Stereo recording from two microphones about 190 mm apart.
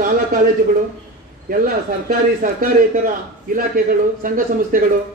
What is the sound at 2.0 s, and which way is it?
A man's voice, 45° right (ahead or behind).